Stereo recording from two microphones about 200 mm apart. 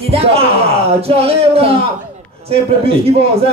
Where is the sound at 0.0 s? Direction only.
30° right (ahead or behind).